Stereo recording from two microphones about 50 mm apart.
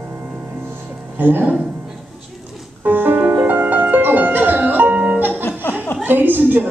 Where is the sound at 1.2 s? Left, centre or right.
Right.